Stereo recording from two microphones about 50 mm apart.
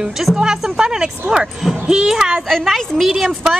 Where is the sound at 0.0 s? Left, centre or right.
Centre.